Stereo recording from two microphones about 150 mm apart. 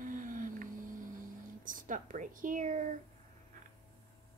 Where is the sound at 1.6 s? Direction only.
60° right (ahead or behind).